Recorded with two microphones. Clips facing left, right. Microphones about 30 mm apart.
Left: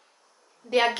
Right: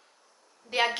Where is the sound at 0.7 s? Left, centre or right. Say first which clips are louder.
Left 4 dB; centre.